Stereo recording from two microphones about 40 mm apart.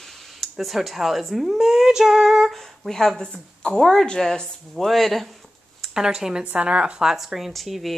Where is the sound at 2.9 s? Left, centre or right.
Centre.